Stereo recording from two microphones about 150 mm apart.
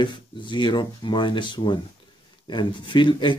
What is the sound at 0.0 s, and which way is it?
Speech, 30° left (ahead or behind).